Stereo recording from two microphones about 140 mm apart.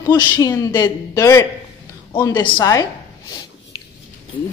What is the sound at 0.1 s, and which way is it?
A man's voice, 25° left (ahead or behind).